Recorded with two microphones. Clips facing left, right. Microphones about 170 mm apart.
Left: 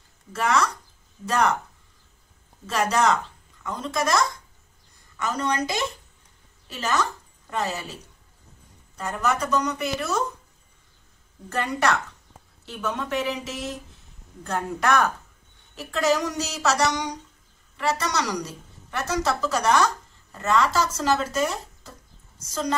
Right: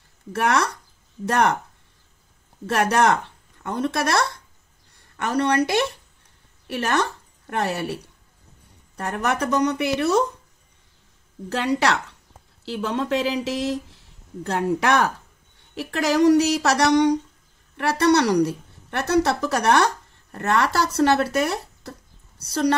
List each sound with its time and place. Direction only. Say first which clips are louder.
0.3 s a woman's voice: right 2 dB; 65° right (ahead or behind)
2.6 s a woman's voice: right 3 dB; 65° right (ahead or behind)
11.4 s a woman's voice: right 3 dB; 70° right (ahead or behind)